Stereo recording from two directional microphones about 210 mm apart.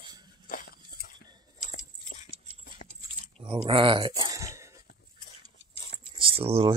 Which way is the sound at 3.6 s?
25° right (ahead or behind).